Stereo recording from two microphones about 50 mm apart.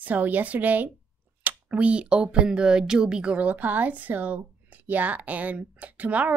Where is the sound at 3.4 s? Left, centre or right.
Right.